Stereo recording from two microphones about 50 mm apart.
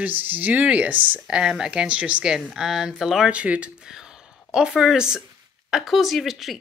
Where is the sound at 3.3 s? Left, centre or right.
Right.